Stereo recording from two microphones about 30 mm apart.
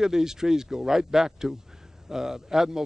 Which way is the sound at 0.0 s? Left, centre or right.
Centre.